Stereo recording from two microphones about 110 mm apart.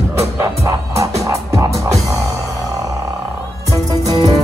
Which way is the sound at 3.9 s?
35° right (ahead or behind).